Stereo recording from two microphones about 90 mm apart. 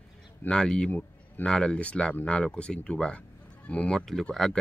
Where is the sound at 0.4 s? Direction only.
10° left (ahead or behind).